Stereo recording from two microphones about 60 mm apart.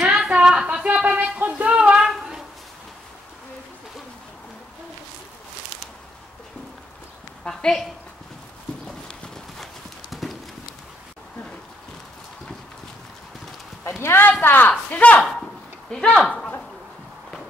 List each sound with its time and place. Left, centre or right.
0.1 s a sound: centre
7.4 s a woman's voice: centre
8.8 s clip-clop: centre
13.8 s clip-clop: left
14.4 s a woman's voice: left
15.2 s a sound: centre